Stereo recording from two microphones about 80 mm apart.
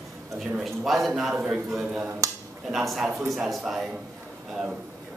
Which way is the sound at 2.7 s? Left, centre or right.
Centre.